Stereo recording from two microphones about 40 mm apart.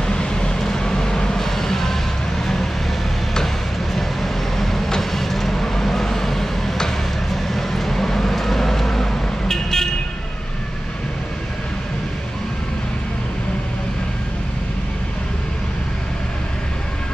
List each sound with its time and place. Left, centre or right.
0.0 s vehicle: centre
3.9 s vehicle: centre